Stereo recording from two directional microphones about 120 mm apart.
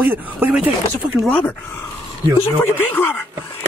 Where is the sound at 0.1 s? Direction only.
10° right (ahead or behind).